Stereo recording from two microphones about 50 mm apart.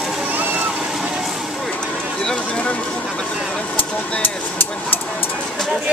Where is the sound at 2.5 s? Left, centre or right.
Left.